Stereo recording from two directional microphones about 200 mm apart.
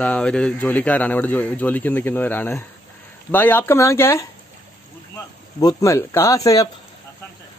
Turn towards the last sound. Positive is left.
turn(degrees=15)  # may be behind; listen again after turning